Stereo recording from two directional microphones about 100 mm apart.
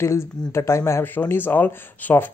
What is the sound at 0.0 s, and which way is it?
Speech, 30° left (ahead or behind).